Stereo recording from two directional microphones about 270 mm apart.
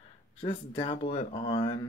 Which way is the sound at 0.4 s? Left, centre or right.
Left.